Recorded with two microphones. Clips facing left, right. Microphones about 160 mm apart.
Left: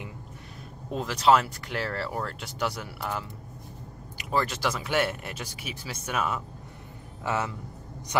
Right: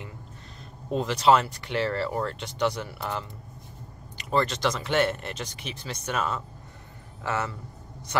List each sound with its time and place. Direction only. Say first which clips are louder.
0.9 s speech: right 1 dB; centre (ahead or behind)
4.3 s speech: right 2 dB; 5° left (ahead or behind)